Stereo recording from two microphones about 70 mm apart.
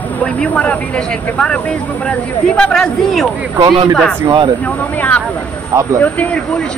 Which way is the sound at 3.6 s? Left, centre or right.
Right.